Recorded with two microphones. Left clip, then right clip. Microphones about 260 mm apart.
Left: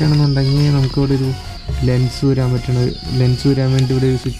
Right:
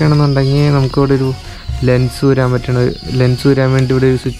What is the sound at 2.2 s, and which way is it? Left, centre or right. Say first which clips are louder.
Speech: right 4 dB; centre.